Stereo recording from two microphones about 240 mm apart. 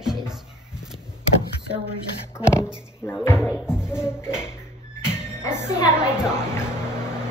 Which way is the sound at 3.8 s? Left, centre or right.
Centre.